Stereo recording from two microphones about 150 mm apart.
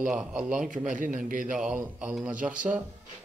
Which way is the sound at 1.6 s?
10° right (ahead or behind).